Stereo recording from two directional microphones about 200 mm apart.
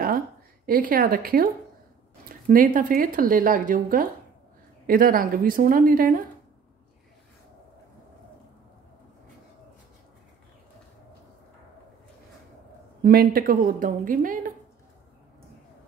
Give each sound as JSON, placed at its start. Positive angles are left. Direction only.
{"t": 0.7, "sound": "speech", "side_deg": -45}
{"t": 13.0, "sound": "speech", "side_deg": -45}